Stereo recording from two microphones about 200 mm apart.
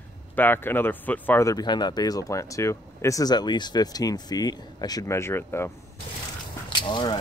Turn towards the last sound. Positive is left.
turn(degrees=20)  # may be behind; listen again after turning